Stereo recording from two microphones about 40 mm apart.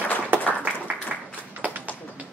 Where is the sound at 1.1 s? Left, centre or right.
Right.